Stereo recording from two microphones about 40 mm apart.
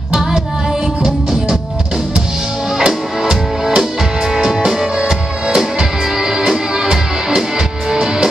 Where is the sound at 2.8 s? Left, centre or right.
Centre.